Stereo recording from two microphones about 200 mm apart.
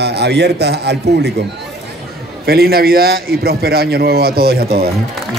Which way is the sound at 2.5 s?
50° right (ahead or behind).